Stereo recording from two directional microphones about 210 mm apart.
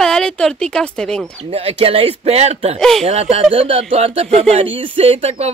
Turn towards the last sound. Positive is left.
turn(degrees=-30)  # may be behind; listen again after turning